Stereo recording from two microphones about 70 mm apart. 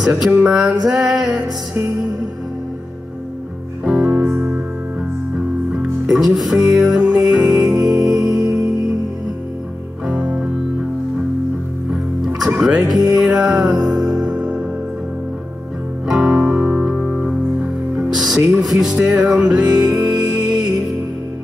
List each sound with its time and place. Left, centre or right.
0.5 s music: centre
3.8 s music: centre
4.2 s music: right
5.7 s music: centre
10.0 s music: centre
11.9 s music: centre
14.2 s music: centre
16.1 s music: centre